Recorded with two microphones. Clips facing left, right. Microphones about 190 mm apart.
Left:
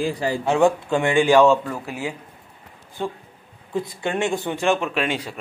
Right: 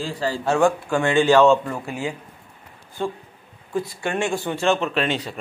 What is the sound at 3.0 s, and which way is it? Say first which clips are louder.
A man's voice: right 1 dB; 15° left (ahead or behind).